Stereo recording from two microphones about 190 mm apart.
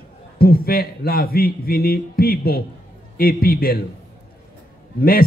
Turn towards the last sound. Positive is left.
turn(degrees=50)  # may be behind; listen again after turning